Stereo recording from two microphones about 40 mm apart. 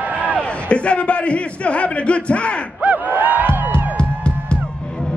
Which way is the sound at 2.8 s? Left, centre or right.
Right.